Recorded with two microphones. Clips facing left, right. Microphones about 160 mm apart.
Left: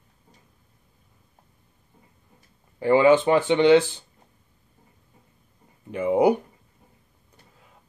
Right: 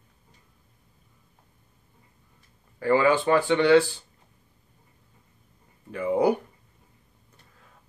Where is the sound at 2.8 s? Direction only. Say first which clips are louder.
Left 4 dB; 20° left (ahead or behind).